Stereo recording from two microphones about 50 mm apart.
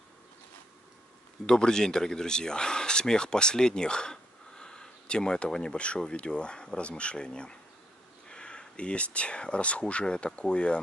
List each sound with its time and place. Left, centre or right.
1.4 s speech: centre